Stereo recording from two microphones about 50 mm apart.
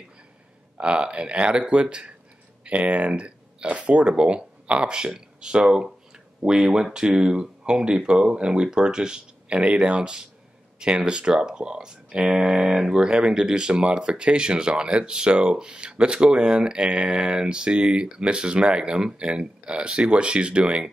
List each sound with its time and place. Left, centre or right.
0.7 s speech: right